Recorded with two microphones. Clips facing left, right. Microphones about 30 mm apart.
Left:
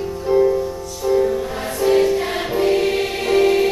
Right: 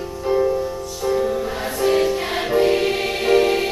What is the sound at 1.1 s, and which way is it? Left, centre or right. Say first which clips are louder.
Music: left 3 dB; centre.